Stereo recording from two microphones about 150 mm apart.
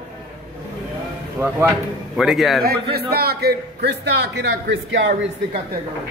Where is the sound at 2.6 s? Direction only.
90° right.